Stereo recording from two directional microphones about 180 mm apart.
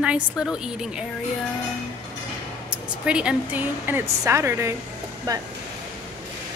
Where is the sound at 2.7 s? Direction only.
5° right (ahead or behind).